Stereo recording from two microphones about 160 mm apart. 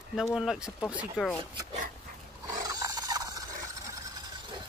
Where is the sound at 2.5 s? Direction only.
25° right (ahead or behind).